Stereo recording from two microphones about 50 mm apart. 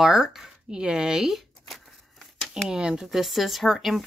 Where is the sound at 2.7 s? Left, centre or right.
Centre.